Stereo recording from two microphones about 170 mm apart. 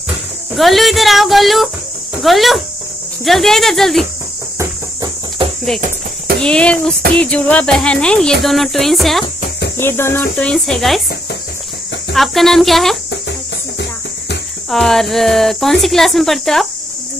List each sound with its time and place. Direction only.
0.6 s speech: centre (ahead or behind)
6.4 s speech: 5° left (ahead or behind)
9.8 s cricket: 15° left (ahead or behind)
10.3 s speech: 5° left (ahead or behind)
12.1 s speech: centre (ahead or behind)
14.7 s speech: centre (ahead or behind)